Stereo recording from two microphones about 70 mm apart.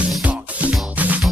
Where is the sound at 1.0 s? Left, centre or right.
Right.